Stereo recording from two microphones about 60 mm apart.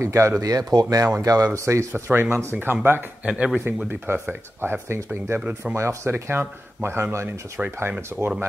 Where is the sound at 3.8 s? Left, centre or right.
Right.